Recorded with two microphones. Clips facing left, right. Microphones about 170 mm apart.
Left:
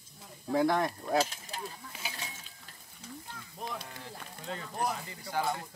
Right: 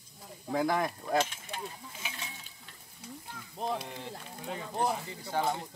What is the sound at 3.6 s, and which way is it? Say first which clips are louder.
Speech: right 6 dB; 25° right (ahead or behind).